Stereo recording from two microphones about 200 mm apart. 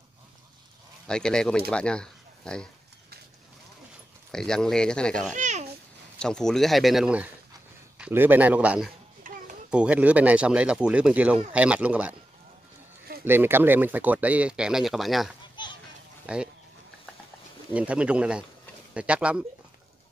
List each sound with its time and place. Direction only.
1.0 s speech: 5° left (ahead or behind)
4.3 s speech: 5° left (ahead or behind)
5.3 s babbling: 35° right (ahead or behind)
6.1 s speech: 5° left (ahead or behind)
9.2 s a sound: 40° right (ahead or behind)
9.7 s speech: 5° right (ahead or behind)
13.2 s speech: 10° right (ahead or behind)
17.7 s speech: 5° right (ahead or behind)